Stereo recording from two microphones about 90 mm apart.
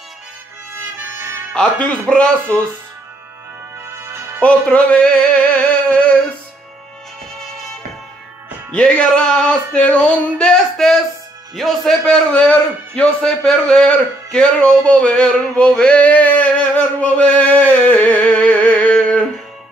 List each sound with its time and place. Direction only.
0.9 s music: 25° right (ahead or behind)
1.5 s a man's voice: 10° left (ahead or behind)
3.8 s music: 25° right (ahead or behind)
4.4 s music: 15° left (ahead or behind)
8.7 s a man's voice: 10° left (ahead or behind)
12.3 s a man's voice: 15° left (ahead or behind)
15.7 s male singing: 10° left (ahead or behind)